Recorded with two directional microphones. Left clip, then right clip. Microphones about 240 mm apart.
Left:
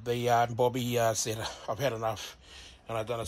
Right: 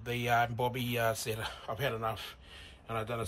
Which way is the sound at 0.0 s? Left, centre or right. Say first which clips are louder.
Left 4 dB; centre.